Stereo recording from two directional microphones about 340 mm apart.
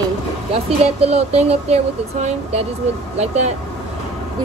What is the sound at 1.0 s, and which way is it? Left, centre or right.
Speech, centre.